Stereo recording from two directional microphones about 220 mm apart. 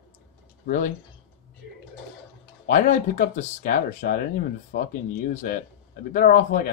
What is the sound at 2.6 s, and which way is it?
Speech, 35° left (ahead or behind).